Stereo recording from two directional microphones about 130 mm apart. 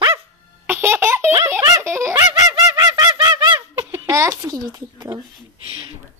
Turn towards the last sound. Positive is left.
turn(degrees=-30)  # may be behind; listen again after turning